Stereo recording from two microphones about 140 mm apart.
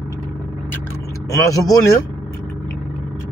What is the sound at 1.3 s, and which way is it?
Speech, 25° left (ahead or behind).